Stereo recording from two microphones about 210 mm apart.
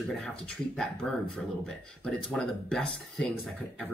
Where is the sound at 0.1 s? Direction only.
5° left (ahead or behind).